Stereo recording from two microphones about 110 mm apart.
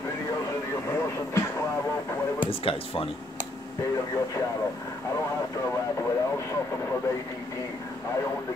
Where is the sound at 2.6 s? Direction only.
60° left (ahead or behind).